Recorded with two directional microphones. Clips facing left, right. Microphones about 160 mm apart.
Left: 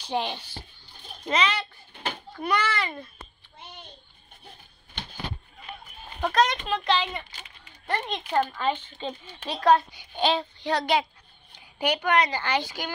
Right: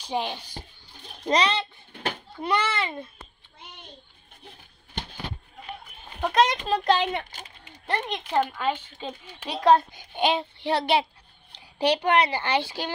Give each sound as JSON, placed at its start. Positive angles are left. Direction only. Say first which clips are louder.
{"t": 0.0, "sound": "speech", "louder": "even", "side_deg": -10}
{"t": 1.2, "sound": "a child's voice", "louder": "right 3 dB", "side_deg": -35}
{"t": 6.3, "sound": "a child's voice", "louder": "right 2 dB", "side_deg": -30}
{"t": 7.2, "sound": "a sound", "louder": "right 4 dB", "side_deg": -45}
{"t": 7.6, "sound": "a sound", "louder": "right 1 dB", "side_deg": -20}
{"t": 8.1, "sound": "a child's voice", "louder": "even", "side_deg": -10}